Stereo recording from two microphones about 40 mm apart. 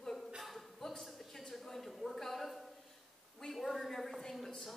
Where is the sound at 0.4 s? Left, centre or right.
Centre.